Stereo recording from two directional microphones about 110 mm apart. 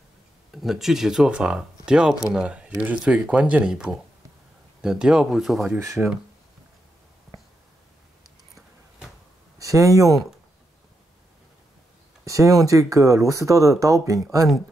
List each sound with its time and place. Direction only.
0.6 s speech: centre (ahead or behind)
5.8 s speech: 25° right (ahead or behind)
9.6 s speech: 30° right (ahead or behind)
12.3 s speech: 30° right (ahead or behind)